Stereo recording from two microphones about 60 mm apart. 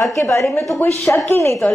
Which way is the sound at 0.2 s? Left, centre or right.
Left.